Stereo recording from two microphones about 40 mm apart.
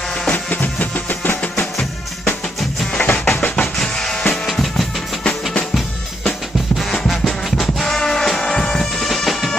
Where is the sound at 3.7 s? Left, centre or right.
Centre.